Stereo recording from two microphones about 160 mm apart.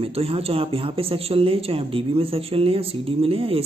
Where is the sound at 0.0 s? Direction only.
35° right (ahead or behind).